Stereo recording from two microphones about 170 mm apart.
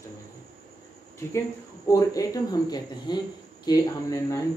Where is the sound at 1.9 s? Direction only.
20° left (ahead or behind).